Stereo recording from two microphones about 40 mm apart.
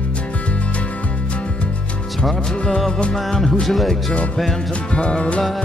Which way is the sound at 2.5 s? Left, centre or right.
Left.